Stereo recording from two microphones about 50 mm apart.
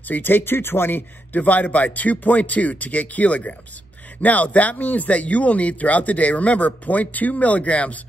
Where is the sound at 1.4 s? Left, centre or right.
Left.